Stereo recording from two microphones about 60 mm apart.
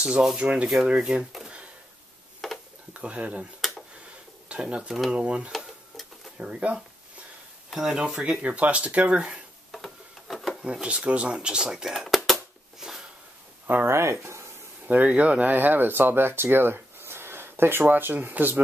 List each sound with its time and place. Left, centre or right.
0.0 s speech: centre
0.4 s speech: centre
2.4 s a sound: centre
2.9 s speech: right
4.5 s speech: centre
5.5 s tick-tock: centre
6.4 s speech: right
7.7 s speech: centre
9.7 s tick-tock: centre
10.6 s a sound: centre
13.8 s speech: right
14.9 s speech: right